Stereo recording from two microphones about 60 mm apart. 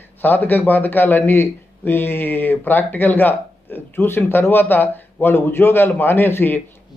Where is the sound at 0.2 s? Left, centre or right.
Left.